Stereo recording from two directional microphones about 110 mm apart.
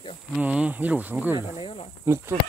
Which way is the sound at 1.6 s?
55° left (ahead or behind).